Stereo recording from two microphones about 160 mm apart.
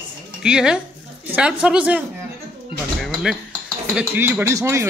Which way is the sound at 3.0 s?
Centre (ahead or behind).